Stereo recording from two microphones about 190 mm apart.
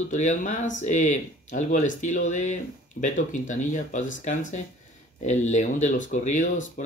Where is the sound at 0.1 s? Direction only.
40° left (ahead or behind).